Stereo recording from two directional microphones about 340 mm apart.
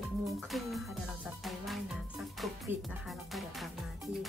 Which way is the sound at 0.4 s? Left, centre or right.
Centre.